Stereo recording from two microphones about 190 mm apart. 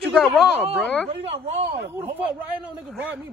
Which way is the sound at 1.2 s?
35° right (ahead or behind).